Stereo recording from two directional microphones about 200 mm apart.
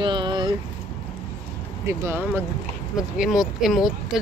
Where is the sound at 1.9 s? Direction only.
15° right (ahead or behind).